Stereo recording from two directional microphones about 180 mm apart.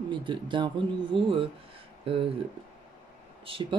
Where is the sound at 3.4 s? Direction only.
30° right (ahead or behind).